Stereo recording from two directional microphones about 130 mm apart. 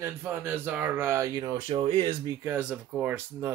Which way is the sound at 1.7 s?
45° right (ahead or behind).